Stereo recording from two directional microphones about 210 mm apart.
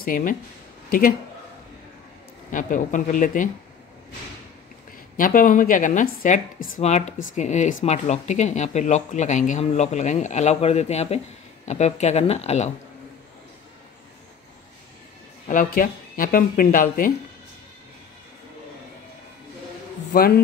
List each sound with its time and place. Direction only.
0.0 s speech: 40° left (ahead or behind)
2.5 s speech: 40° left (ahead or behind)
5.1 s speech: 40° left (ahead or behind)
15.4 s speech: 40° left (ahead or behind)
20.1 s a man's voice: 45° left (ahead or behind)